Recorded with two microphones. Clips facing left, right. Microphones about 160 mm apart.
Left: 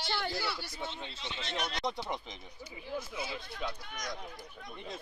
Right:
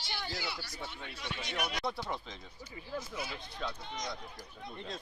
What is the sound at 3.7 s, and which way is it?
Speech, 25° right (ahead or behind).